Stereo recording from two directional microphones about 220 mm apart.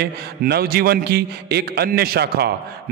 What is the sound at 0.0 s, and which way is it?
A man's voice, 45° right (ahead or behind).